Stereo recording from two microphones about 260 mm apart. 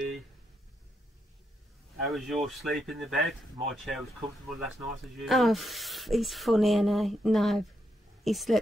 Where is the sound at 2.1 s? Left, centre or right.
Centre.